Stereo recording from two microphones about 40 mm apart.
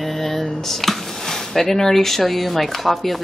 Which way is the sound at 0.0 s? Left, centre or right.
Centre.